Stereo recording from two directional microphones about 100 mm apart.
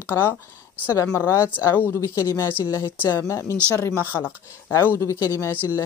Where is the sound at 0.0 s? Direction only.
25° left (ahead or behind).